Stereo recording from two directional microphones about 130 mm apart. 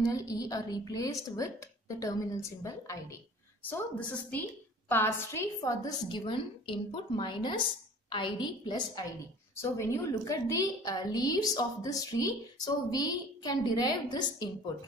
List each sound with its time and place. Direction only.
0.0 s a woman's voice: 30° left (ahead or behind)
4.3 s a woman's voice: 15° left (ahead or behind)
6.0 s a woman's voice: 40° left (ahead or behind)